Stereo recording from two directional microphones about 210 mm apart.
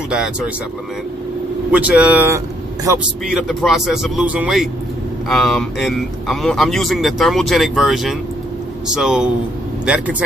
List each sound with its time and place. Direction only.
0.1 s speech: 5° right (ahead or behind)
1.7 s speech: 5° right (ahead or behind)
3.3 s speech: centre (ahead or behind)